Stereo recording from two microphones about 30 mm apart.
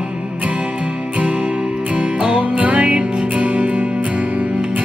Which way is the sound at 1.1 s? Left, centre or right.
Right.